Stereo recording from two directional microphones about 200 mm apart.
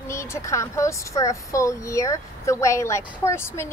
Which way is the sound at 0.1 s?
15° left (ahead or behind).